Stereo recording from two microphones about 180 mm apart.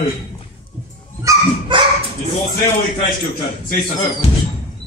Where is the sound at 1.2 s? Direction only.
25° right (ahead or behind).